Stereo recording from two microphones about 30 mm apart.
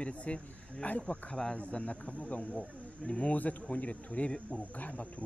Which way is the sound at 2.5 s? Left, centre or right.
Left.